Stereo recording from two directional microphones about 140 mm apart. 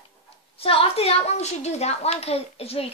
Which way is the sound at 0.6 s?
45° left (ahead or behind).